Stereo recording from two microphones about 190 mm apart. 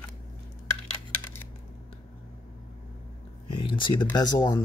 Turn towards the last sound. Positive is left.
turn(degrees=20)  # may be behind; listen again after turning